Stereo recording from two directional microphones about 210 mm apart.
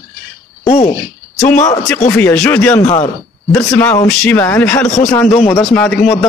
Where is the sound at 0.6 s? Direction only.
30° left (ahead or behind).